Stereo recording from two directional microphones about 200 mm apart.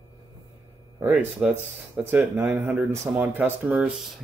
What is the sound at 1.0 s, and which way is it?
Speech, 10° right (ahead or behind).